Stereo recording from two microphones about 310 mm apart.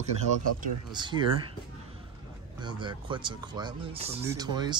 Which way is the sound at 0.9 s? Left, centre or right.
Centre.